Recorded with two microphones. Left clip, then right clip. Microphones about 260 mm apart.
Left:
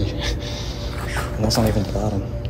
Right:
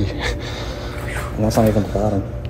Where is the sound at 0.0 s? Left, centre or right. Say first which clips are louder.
Right 3 dB; centre.